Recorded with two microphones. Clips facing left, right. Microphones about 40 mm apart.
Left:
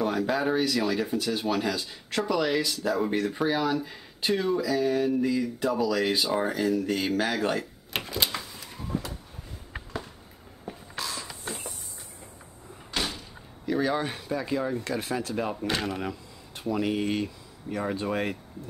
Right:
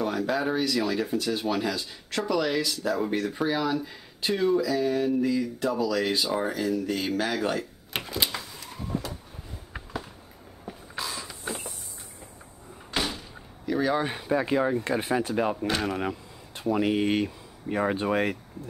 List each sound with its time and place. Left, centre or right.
0.0 s speech: centre
10.6 s a sound: centre
12.9 s door: centre
13.7 s speech: centre
14.1 s speech: right
15.8 s a sound: centre
16.6 s speech: centre